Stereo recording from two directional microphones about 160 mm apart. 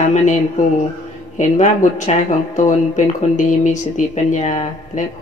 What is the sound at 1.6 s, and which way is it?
Speech, 50° left (ahead or behind).